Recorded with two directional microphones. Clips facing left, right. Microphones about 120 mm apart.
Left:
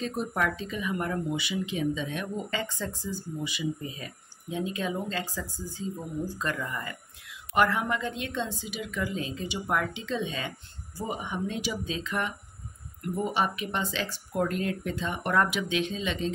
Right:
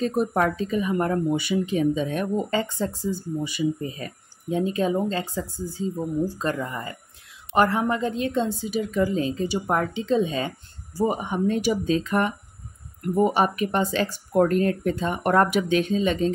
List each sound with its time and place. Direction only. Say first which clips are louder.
0.0 s speech: right 7 dB; 45° right (ahead or behind)
3.4 s speech: right 7 dB; 45° right (ahead or behind)